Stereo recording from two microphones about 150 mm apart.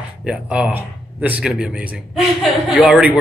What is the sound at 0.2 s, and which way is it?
A man's voice, 5° right (ahead or behind).